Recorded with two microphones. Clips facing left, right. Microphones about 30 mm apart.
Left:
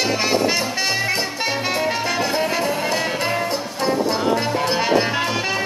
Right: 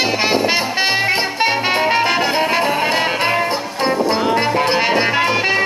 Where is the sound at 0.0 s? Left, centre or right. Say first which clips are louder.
Right 3 dB; right.